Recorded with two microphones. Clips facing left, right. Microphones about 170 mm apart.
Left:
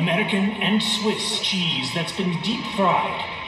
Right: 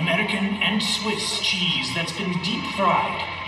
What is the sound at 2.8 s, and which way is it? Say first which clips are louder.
Speech: left 2 dB; 30° left (ahead or behind).